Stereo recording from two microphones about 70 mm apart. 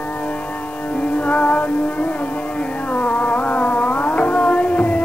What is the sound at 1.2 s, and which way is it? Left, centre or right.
Music, centre.